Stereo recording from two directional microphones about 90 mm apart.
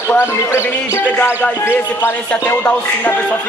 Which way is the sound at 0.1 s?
30° left (ahead or behind).